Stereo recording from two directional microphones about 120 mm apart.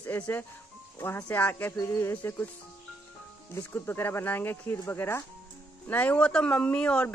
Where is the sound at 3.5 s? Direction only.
20° left (ahead or behind).